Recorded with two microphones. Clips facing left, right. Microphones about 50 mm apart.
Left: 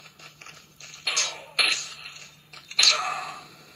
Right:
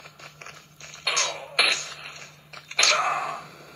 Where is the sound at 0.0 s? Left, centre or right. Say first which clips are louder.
Right 4 dB; right.